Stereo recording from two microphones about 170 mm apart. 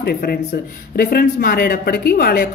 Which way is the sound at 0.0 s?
65° left (ahead or behind).